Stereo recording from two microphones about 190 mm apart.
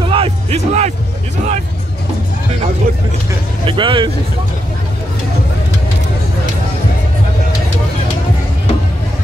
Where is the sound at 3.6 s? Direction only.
25° right (ahead or behind).